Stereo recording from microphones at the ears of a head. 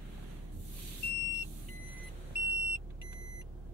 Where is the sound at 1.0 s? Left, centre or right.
Left.